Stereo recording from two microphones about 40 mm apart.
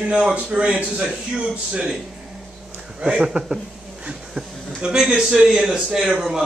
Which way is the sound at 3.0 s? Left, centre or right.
Right.